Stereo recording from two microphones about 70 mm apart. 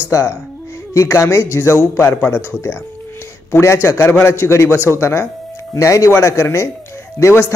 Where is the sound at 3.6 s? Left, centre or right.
Left.